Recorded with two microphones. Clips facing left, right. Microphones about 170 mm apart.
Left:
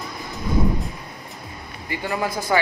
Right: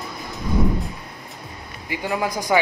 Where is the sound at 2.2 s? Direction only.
15° right (ahead or behind).